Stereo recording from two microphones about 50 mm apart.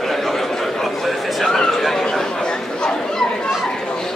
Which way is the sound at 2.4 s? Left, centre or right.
Centre.